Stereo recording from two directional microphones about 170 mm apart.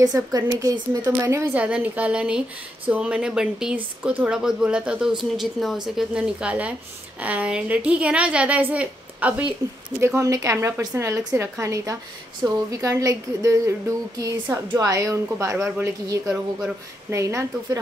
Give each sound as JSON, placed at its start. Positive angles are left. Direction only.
{"t": 0.0, "sound": "speech", "side_deg": -20}